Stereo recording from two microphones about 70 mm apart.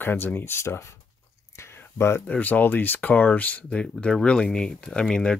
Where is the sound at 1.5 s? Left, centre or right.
Left.